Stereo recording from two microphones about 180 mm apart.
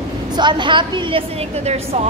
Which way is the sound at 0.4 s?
25° right (ahead or behind).